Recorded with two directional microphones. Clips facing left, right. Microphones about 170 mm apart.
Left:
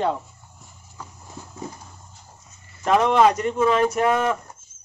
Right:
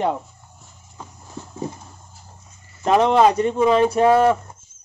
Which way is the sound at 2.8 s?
25° right (ahead or behind).